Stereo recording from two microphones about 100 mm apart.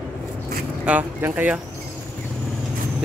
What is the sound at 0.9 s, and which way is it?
Speech, 20° right (ahead or behind).